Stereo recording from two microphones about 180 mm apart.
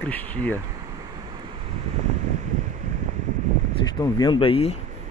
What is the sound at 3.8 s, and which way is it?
Speech, 20° left (ahead or behind).